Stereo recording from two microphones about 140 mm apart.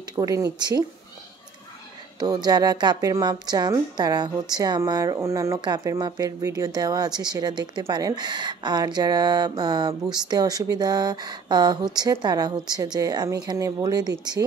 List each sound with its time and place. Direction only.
0.1 s speech: 25° right (ahead or behind)
2.1 s speech: 30° right (ahead or behind)